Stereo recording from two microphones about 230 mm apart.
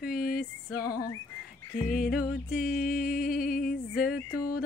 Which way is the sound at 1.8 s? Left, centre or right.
Left.